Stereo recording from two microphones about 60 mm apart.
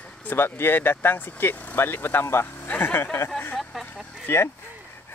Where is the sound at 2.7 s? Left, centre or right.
Left.